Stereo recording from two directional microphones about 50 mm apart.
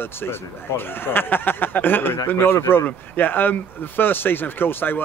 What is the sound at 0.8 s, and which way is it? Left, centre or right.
Speech, left.